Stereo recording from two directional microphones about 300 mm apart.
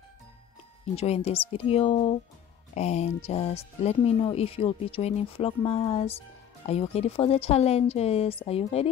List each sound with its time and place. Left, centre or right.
0.9 s speech: centre